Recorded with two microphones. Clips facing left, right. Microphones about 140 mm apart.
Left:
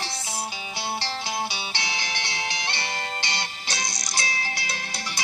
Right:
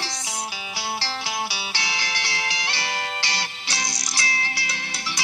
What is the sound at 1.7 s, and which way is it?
Music, 20° left (ahead or behind).